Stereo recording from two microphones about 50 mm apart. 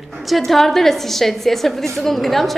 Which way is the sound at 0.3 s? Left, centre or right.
Centre.